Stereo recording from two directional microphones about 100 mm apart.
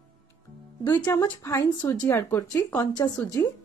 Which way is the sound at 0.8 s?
25° left (ahead or behind).